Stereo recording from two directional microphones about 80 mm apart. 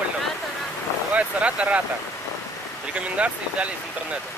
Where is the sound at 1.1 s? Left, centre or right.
Centre.